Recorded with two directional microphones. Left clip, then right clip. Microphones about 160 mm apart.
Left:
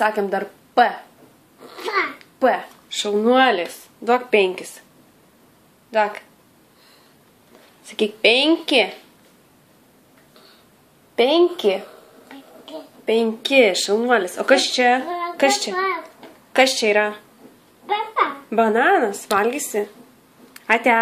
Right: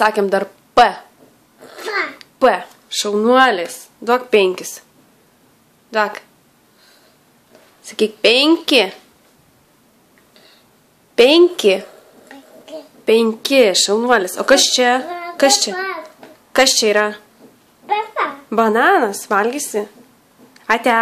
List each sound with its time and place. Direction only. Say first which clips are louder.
0.0 s speech: right 5 dB; 40° right (ahead or behind)
1.8 s babbling: right 1 dB; 10° right (ahead or behind)
2.1 s speech: right 5 dB; 40° right (ahead or behind)
5.9 s speech: right 2 dB; 35° right (ahead or behind)
7.8 s speech: right 3 dB; 30° right (ahead or behind)
11.1 s a woman's voice: right 6 dB; 50° right (ahead or behind)
13.0 s speech: right 5 dB; 45° right (ahead or behind); by 15.0 s 30° right (ahead or behind)
15.3 s child singing: right 5 dB; 30° right (ahead or behind)
16.5 s speech: right 3 dB; 35° right (ahead or behind)
18.5 s speech: right 4 dB; 30° right (ahead or behind)